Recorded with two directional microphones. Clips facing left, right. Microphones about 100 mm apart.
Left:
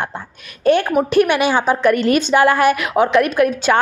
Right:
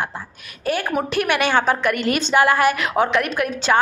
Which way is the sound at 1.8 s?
30° left (ahead or behind).